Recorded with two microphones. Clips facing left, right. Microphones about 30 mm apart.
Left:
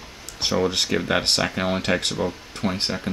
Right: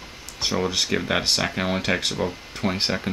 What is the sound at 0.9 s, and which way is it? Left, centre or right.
Speech, centre.